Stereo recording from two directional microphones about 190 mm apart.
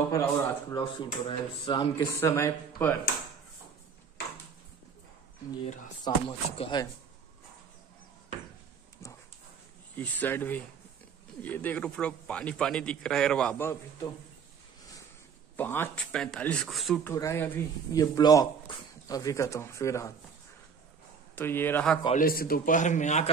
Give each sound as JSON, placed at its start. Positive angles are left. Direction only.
{"t": 0.1, "sound": "speech", "side_deg": 15}
{"t": 2.1, "sound": "speech", "side_deg": 15}
{"t": 6.0, "sound": "speech", "side_deg": 25}
{"t": 9.0, "sound": "dog", "side_deg": 15}
{"t": 9.9, "sound": "speech", "side_deg": 10}
{"t": 15.5, "sound": "speech", "side_deg": 10}
{"t": 17.0, "sound": "speech", "side_deg": 15}
{"t": 21.4, "sound": "speech", "side_deg": 10}
{"t": 22.2, "sound": "speech", "side_deg": 50}